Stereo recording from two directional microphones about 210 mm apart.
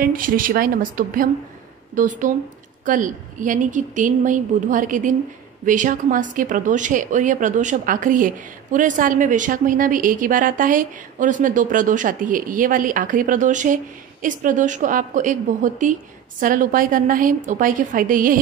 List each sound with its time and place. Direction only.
0.0 s a woman's voice: 40° right (ahead or behind)